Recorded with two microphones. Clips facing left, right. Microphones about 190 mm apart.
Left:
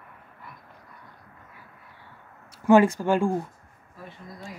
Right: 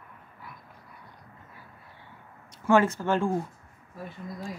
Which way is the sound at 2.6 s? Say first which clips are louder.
Left 5 dB; 15° left (ahead or behind).